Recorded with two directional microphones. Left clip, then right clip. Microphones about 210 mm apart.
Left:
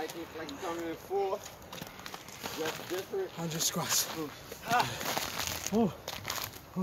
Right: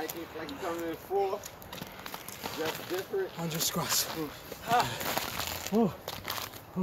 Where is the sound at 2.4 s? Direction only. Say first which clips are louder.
Right 1 dB; 5° left (ahead or behind).